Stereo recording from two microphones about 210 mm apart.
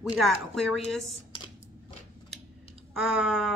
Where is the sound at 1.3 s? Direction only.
25° left (ahead or behind).